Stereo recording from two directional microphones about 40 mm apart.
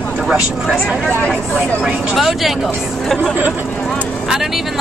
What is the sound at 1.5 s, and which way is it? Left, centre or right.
Speech, centre.